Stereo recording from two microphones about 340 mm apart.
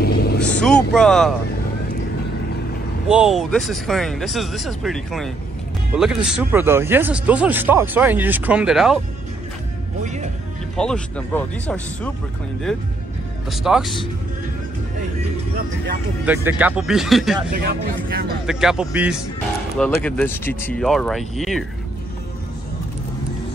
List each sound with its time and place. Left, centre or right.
0.0 s vehicle: left
0.6 s speech: centre
3.1 s speech: centre
10.0 s speech: right
10.8 s speech: centre
13.5 s speech: centre
16.3 s speech: centre
18.5 s speech: centre